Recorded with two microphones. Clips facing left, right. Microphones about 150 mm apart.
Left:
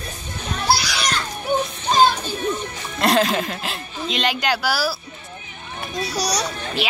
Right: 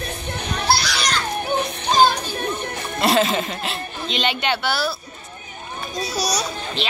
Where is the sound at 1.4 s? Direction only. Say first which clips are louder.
Left 1 dB; 65° right (ahead or behind).